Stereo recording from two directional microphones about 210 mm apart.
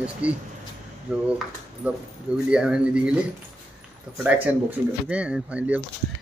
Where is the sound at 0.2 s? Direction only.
5° right (ahead or behind).